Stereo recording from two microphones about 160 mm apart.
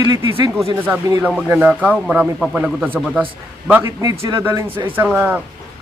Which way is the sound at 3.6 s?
10° right (ahead or behind).